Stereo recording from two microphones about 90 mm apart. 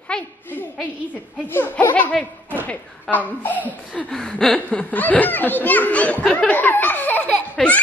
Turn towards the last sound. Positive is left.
turn(degrees=15)  # may be behind; listen again after turning